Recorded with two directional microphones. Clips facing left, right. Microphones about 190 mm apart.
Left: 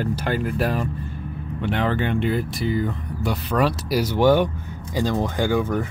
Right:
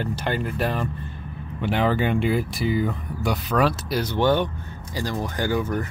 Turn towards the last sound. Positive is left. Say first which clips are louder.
# left 3 dB
turn(degrees=15)  # may be behind; listen again after turning